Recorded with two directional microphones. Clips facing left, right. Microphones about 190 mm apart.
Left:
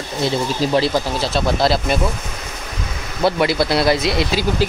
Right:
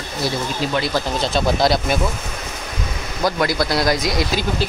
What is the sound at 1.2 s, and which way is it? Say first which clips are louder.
Speech: right 3 dB; centre (ahead or behind).